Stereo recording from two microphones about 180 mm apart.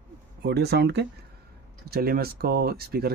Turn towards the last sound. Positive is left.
turn(degrees=-60)  # may be behind; listen again after turning